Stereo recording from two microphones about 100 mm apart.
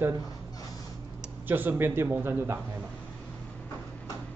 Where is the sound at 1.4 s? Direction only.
20° right (ahead or behind).